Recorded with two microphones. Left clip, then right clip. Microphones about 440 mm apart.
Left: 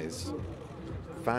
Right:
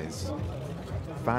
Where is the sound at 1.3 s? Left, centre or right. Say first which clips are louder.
Right 2 dB; left.